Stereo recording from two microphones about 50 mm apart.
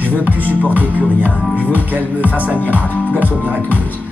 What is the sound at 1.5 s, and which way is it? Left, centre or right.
Music, left.